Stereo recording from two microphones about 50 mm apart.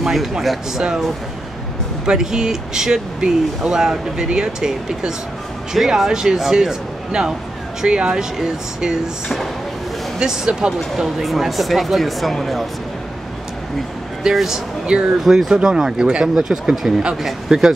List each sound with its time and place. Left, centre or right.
0.0 s speech: centre
2.0 s speech: centre
11.0 s speech: centre
14.3 s speech: centre
14.9 s speech: centre
15.2 s speech: centre